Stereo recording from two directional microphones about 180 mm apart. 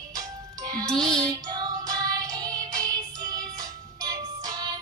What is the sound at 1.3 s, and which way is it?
Music, 25° right (ahead or behind).